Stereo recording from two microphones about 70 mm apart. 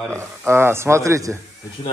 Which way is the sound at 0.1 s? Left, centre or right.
Right.